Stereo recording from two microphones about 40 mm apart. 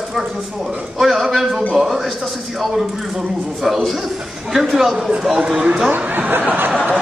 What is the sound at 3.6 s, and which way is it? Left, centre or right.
Speech, centre.